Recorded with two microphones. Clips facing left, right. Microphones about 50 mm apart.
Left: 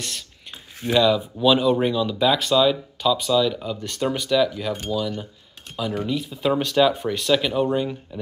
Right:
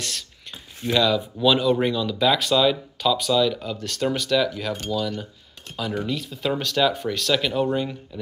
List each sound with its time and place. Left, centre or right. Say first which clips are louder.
0.8 s speech: left 2 dB; centre
3.7 s speech: even; centre